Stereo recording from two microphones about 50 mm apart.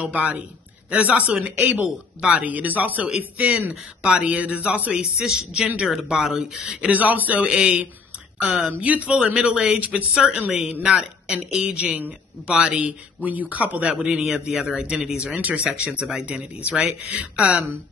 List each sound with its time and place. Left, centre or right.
0.0 s a man's voice: right
4.9 s speech: centre
6.8 s speech: right
7.4 s a man's voice: centre
8.8 s a man's voice: right
9.2 s a man's voice: centre
14.1 s speech: centre
14.8 s a man's voice: right
15.3 s speech: right
15.6 s a man's voice: right